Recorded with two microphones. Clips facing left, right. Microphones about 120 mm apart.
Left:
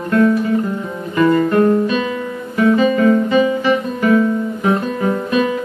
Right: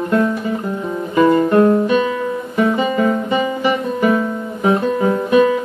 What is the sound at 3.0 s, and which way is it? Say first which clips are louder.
Guitar: left 4 dB; 15° right (ahead or behind).